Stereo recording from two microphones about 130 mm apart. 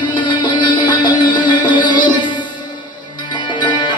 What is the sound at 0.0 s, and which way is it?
Music, 35° left (ahead or behind).